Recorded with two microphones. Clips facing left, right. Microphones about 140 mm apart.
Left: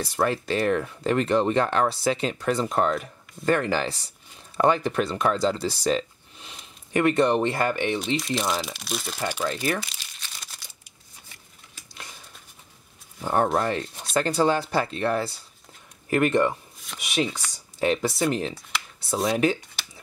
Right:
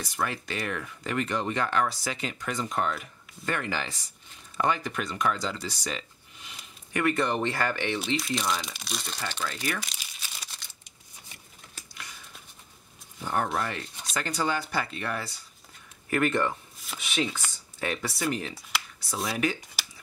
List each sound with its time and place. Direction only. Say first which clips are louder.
0.0 s speech: left 7 dB; 30° left (ahead or behind)
8.2 s speech: left 3 dB; centre (ahead or behind)
9.5 s speech: left 6 dB; 30° left (ahead or behind)
9.8 s crumpling: left 4 dB; centre (ahead or behind)
11.9 s a sound: left 3 dB; 25° left (ahead or behind)
13.2 s speech: left 6 dB; 35° left (ahead or behind); by 17.3 s 15° left (ahead or behind)
17.7 s speech: left 9 dB; 25° left (ahead or behind)